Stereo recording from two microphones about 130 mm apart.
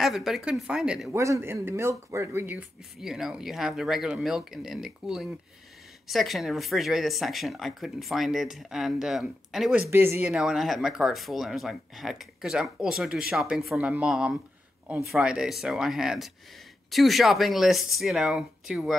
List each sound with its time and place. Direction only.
0.0 s speech: centre (ahead or behind)
1.1 s speech: 20° right (ahead or behind)
3.0 s speech: 5° right (ahead or behind)
9.8 s speech: 20° right (ahead or behind)